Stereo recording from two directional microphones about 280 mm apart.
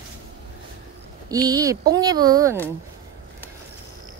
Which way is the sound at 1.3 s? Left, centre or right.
Centre.